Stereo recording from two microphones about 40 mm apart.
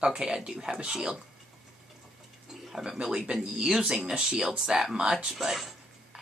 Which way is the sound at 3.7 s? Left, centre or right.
Centre.